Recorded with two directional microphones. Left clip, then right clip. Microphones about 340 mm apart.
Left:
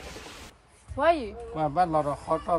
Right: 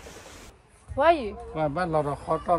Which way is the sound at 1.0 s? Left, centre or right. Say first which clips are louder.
Right 3 dB; centre.